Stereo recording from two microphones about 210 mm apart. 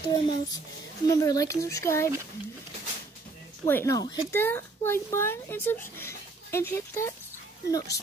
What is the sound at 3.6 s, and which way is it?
Speech, 10° left (ahead or behind).